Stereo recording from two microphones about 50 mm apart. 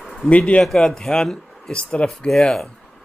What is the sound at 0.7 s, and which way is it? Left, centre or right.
Speech, centre.